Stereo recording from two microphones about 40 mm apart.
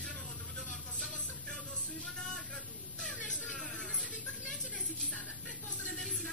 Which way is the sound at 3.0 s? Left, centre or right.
Left.